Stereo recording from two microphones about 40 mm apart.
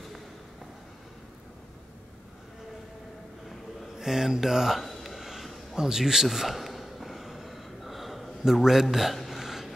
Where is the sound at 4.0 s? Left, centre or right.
Centre.